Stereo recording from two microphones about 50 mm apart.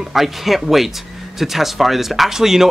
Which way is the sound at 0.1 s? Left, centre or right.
Centre.